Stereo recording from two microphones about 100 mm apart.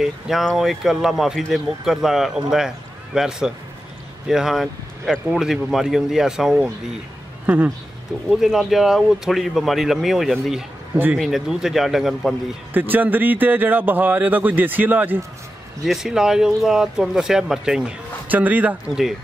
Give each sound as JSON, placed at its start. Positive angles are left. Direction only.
{"t": 0.0, "sound": "speech", "side_deg": 0}
{"t": 7.4, "sound": "speech", "side_deg": -20}
{"t": 8.3, "sound": "speech", "side_deg": -5}
{"t": 12.7, "sound": "speech", "side_deg": -20}
{"t": 15.8, "sound": "speech", "side_deg": -5}